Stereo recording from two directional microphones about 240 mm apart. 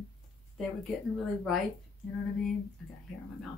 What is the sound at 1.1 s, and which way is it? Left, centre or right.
Speech, centre.